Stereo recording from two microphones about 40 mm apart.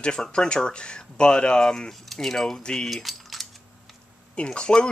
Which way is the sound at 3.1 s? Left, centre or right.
Centre.